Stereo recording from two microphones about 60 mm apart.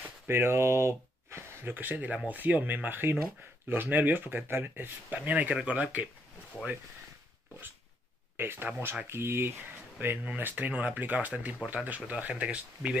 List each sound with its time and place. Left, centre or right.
0.3 s speech: right
1.7 s speech: right
8.4 s speech: right
9.9 s speech: right